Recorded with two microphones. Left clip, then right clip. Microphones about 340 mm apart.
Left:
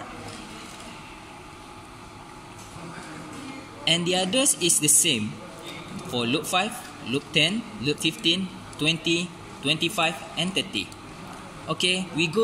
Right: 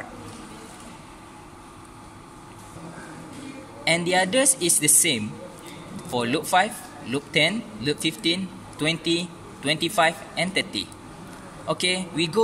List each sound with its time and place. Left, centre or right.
3.8 s a man's voice: right